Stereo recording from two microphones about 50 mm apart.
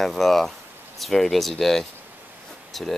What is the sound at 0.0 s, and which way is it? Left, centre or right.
Speech, centre.